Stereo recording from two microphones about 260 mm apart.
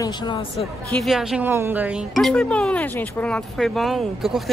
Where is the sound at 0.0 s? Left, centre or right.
Centre.